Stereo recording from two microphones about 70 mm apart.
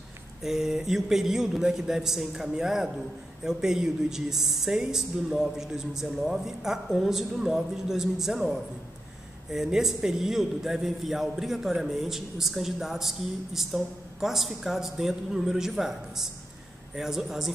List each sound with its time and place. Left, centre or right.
0.4 s a man's voice: centre